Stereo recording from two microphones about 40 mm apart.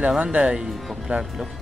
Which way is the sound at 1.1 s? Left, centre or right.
Right.